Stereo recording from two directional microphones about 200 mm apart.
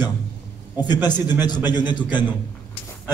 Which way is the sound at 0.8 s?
20° left (ahead or behind).